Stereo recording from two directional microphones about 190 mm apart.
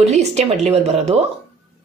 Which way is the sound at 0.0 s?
35° right (ahead or behind).